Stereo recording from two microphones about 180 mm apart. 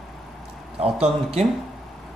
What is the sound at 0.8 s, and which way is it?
Speech, 35° right (ahead or behind).